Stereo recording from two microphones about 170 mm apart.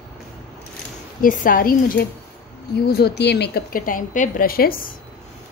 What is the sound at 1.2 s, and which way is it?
Speech, 55° left (ahead or behind).